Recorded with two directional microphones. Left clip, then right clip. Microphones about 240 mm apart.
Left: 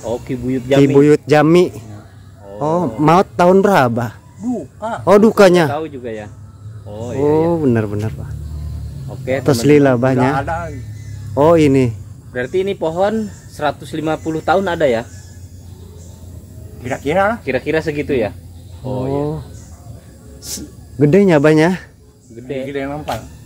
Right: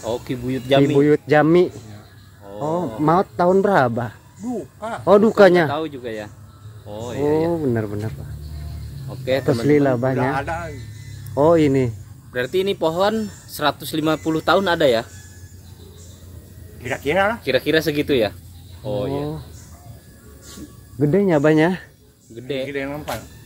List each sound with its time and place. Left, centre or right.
0.0 s speech: right
0.9 s speech: centre
5.7 s speech: right
7.2 s speech: centre
9.5 s speech: centre
12.3 s speech: right
16.8 s speech: centre
17.5 s speech: right
21.0 s speech: centre
22.3 s speech: right
22.7 s speech: centre